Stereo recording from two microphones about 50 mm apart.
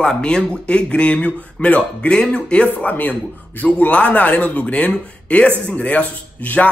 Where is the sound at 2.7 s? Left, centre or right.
Left.